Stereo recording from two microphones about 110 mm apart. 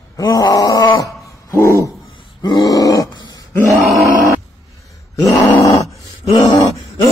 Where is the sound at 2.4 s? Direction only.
35° left (ahead or behind).